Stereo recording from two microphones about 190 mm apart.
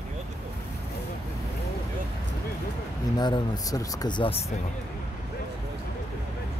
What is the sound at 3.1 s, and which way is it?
Speech, 20° left (ahead or behind).